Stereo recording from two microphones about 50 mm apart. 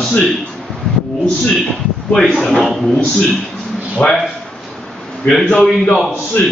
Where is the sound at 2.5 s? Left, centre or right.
Centre.